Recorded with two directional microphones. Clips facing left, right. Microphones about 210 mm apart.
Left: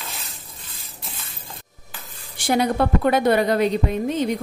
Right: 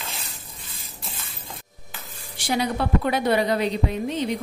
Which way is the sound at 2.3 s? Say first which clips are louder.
Left 5 dB; 50° left (ahead or behind).